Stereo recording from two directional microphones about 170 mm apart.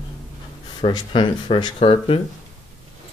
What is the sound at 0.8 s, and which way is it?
Speech, 25° left (ahead or behind).